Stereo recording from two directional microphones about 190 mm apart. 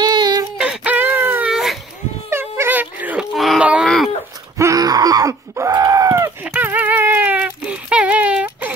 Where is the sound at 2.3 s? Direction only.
10° right (ahead or behind).